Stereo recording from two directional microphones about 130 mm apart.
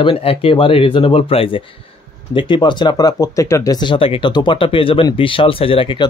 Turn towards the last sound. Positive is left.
turn(degrees=40)  # may be behind; listen again after turning